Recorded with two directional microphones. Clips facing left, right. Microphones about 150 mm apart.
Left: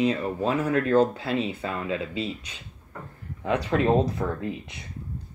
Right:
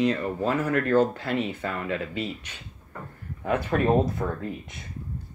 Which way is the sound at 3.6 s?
20° left (ahead or behind).